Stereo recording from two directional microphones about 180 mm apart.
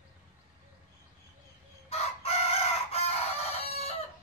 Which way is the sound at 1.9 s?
35° left (ahead or behind).